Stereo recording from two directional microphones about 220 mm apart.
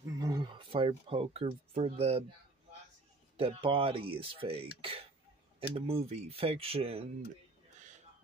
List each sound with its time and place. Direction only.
0.2 s speech: 20° right (ahead or behind)
3.3 s speech: 25° right (ahead or behind)